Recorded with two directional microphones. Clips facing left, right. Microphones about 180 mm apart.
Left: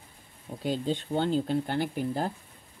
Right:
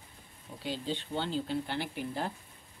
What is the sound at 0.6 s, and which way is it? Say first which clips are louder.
Speech: left 6 dB; 45° left (ahead or behind).